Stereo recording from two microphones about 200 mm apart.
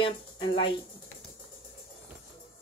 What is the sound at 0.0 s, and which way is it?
Speech, 25° left (ahead or behind).